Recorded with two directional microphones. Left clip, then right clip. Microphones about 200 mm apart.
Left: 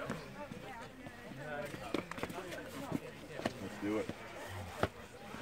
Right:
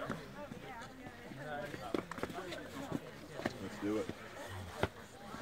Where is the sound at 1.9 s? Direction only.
45° left (ahead or behind).